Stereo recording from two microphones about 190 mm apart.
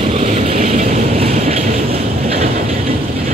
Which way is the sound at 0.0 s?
35° right (ahead or behind).